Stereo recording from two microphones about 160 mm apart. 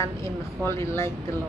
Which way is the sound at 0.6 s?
15° left (ahead or behind).